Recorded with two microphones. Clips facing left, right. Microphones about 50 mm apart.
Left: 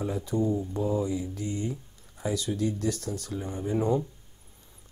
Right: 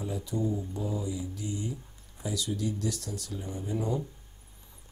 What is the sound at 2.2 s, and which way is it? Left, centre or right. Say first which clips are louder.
Speech: left 4 dB; left.